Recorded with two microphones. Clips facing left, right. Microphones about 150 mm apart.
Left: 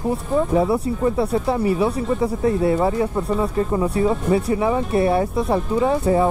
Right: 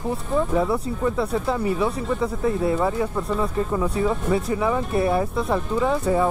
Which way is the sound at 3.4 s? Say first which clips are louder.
Left 3 dB; 20° left (ahead or behind).